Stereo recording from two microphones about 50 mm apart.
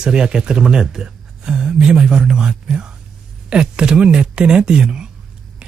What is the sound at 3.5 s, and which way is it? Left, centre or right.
Speech, centre.